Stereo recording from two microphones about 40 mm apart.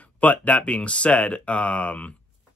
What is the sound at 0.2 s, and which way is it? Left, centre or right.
Speech, left.